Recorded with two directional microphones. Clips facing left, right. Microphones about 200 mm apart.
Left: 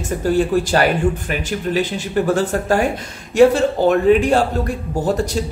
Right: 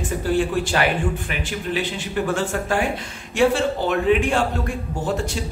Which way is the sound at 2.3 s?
40° left (ahead or behind).